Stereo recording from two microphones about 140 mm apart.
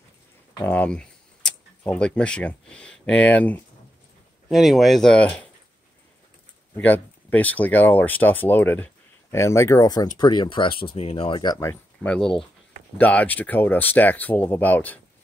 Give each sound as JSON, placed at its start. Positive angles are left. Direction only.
{"t": 0.6, "sound": "speech", "side_deg": 10}
{"t": 4.5, "sound": "speech", "side_deg": 0}
{"t": 6.7, "sound": "speech", "side_deg": 10}
{"t": 11.7, "sound": "speech", "side_deg": 10}